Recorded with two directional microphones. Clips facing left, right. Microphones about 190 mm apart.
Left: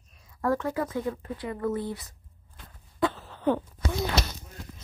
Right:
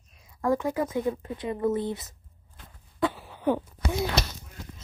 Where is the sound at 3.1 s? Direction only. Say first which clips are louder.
Even; 10° right (ahead or behind).